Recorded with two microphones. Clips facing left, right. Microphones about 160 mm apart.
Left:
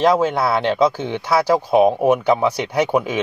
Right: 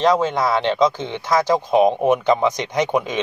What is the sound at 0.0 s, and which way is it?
Speech, 10° left (ahead or behind).